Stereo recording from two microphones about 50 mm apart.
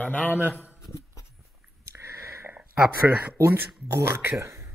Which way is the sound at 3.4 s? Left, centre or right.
Right.